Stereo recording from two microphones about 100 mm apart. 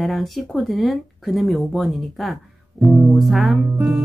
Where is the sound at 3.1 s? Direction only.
Centre (ahead or behind).